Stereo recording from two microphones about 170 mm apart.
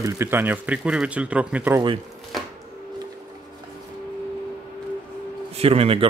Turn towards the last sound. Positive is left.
turn(degrees=-35)  # may be behind; listen again after turning